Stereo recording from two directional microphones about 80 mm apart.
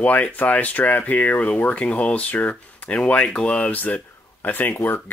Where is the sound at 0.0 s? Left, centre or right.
Left.